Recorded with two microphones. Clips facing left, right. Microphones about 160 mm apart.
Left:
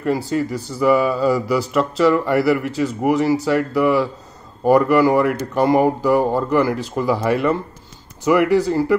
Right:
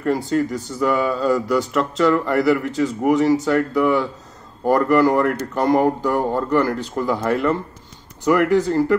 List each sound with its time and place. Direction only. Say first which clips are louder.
0.3 s speech: right 1 dB; 5° left (ahead or behind)